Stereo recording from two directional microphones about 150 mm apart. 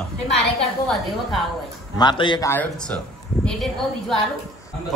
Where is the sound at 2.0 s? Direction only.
30° left (ahead or behind).